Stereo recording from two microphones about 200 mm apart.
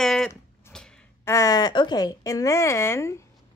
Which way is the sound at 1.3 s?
15° left (ahead or behind).